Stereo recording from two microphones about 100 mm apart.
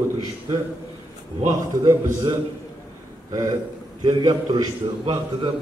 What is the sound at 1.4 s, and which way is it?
A man's voice, 40° right (ahead or behind).